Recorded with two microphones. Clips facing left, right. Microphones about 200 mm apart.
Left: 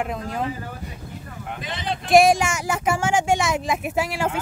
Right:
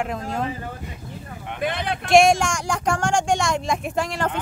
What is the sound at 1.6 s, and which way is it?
Speech, 60° right (ahead or behind).